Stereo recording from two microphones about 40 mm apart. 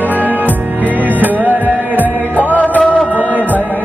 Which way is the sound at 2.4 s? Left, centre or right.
Left.